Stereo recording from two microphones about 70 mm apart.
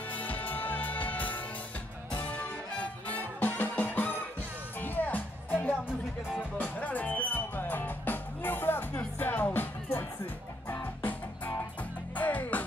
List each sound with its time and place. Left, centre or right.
0.1 s music: left